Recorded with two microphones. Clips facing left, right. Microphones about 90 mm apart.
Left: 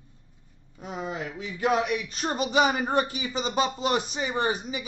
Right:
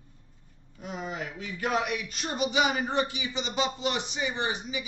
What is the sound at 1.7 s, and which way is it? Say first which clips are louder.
A man's voice: left 4 dB; 35° left (ahead or behind).